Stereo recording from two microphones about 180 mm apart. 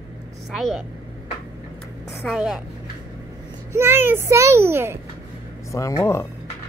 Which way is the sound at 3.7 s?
10° right (ahead or behind).